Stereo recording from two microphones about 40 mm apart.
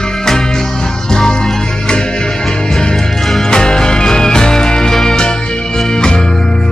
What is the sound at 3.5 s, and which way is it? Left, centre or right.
Music, centre.